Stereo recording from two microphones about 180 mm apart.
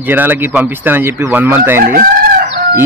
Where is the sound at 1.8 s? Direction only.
50° right (ahead or behind).